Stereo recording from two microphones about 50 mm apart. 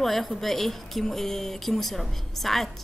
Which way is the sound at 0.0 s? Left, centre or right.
Centre.